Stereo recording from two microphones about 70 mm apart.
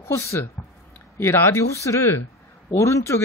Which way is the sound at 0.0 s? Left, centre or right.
Left.